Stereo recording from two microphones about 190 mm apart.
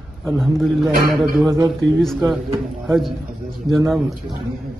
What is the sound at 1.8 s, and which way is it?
Speech, 75° right (ahead or behind).